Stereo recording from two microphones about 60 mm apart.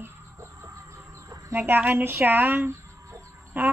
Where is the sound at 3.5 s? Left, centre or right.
Right.